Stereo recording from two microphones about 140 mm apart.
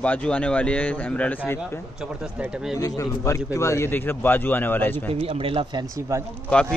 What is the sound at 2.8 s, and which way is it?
A man's voice, 20° left (ahead or behind).